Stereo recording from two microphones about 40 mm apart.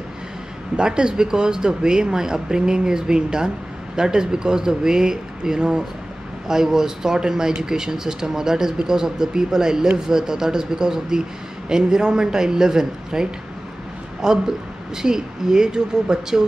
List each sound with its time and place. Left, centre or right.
0.7 s speech: right